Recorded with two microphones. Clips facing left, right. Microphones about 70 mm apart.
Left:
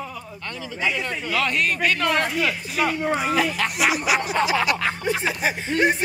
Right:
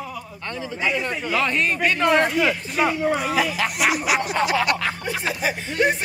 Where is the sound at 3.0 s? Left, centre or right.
Centre.